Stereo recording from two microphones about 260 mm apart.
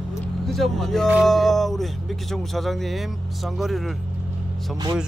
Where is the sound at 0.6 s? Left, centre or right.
Centre.